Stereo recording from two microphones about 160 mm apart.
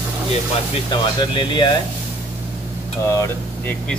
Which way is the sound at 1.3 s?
30° left (ahead or behind).